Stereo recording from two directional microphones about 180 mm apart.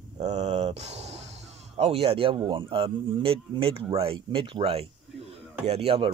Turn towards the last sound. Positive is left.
turn(degrees=-30)  # may be behind; listen again after turning